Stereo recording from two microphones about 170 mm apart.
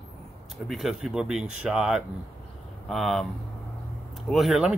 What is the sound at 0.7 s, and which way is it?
Speech, centre (ahead or behind).